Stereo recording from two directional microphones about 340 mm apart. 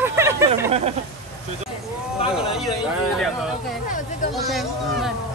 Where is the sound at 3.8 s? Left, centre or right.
Left.